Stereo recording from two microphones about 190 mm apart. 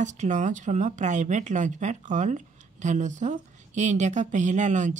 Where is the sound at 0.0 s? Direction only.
40° right (ahead or behind).